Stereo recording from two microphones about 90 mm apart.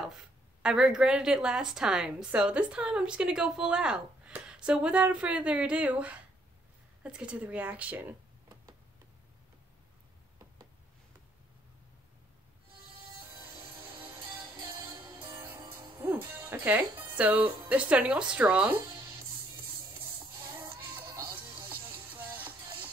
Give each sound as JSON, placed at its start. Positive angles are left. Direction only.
{"t": 0.0, "sound": "a woman's voice", "side_deg": -5}
{"t": 13.6, "sound": "music", "side_deg": -75}
{"t": 16.0, "sound": "speech", "side_deg": -25}
{"t": 21.1, "sound": "music", "side_deg": -35}
{"t": 21.5, "sound": "music", "side_deg": -70}
{"t": 22.1, "sound": "music", "side_deg": -20}